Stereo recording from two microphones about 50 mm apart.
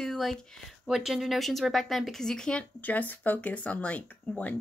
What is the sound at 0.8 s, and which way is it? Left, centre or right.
Speech, centre.